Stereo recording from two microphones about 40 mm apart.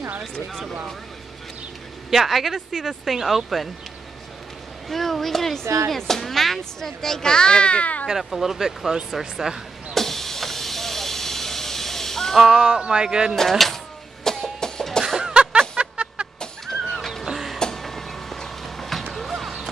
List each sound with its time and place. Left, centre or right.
0.2 s speech: centre
2.0 s speech: centre
4.8 s speech: centre; by 8.1 s left
8.2 s speech: centre
9.9 s vehicle: centre
12.4 s speech: centre
13.4 s speech: centre
14.2 s a sound: centre
15.1 s music: right
16.6 s a sound: centre
17.3 s music: centre
17.8 s vehicle: centre
19.1 s a sound: centre